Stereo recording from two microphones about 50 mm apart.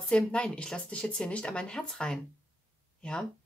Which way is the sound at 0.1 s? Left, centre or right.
Left.